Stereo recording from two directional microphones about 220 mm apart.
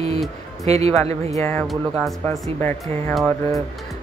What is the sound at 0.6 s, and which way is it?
Speech, 30° right (ahead or behind).